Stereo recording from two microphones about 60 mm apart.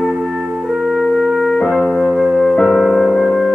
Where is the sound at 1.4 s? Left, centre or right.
Centre.